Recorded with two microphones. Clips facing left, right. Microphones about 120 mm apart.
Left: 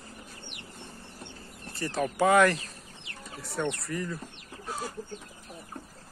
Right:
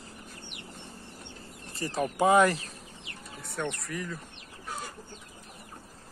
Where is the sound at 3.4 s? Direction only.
Centre (ahead or behind).